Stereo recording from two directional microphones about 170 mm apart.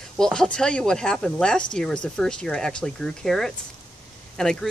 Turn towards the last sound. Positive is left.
turn(degrees=5)  # may be behind; listen again after turning